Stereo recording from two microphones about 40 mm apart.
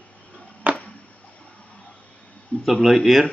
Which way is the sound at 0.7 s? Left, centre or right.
Right.